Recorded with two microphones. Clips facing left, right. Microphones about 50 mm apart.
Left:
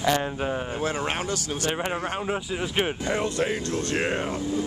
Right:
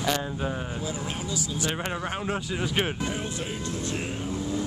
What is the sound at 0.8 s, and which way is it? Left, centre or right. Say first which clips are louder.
Speech: left 6 dB; left.